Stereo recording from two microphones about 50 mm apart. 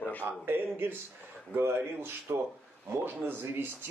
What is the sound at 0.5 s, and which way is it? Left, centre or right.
Speech, right.